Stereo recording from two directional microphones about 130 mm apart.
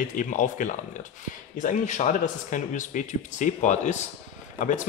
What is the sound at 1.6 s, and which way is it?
Speech, 70° left (ahead or behind).